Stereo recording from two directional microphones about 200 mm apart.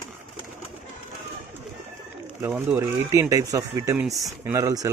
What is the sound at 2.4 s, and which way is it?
Speech, 10° right (ahead or behind).